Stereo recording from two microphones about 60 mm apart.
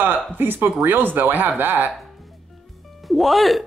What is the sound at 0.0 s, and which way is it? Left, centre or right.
Speech, right.